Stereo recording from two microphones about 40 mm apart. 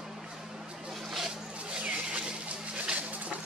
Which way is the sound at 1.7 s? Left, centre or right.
Right.